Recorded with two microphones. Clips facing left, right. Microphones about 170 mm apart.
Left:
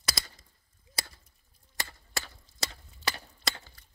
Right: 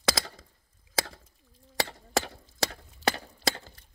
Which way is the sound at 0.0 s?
90° right.